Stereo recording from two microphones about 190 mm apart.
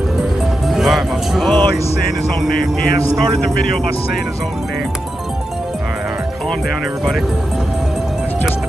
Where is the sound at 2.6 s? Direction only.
50° left (ahead or behind).